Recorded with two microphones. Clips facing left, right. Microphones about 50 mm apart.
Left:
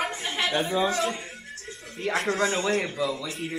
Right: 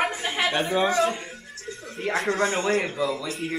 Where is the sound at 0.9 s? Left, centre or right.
Centre.